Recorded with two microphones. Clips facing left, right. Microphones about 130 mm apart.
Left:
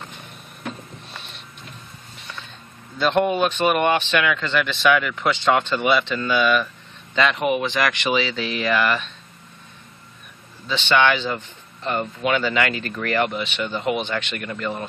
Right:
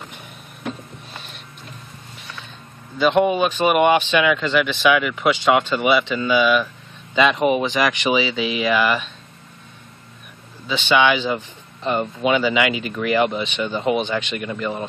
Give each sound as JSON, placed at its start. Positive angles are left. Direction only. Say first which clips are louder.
{"t": 0.7, "sound": "a sound", "louder": "right 3 dB", "side_deg": 0}
{"t": 3.0, "sound": "speech", "louder": "right 2 dB", "side_deg": -5}
{"t": 7.2, "sound": "speech", "louder": "right 3 dB", "side_deg": -15}
{"t": 10.7, "sound": "speech", "louder": "right 2 dB", "side_deg": -5}
{"t": 11.8, "sound": "speech", "louder": "right 3 dB", "side_deg": -20}
{"t": 12.4, "sound": "speech", "louder": "right 3 dB", "side_deg": -10}